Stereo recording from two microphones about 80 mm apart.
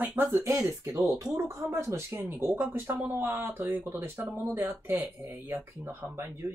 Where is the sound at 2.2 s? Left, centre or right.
Right.